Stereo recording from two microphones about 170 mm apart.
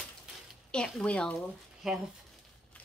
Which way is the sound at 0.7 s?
5° left (ahead or behind).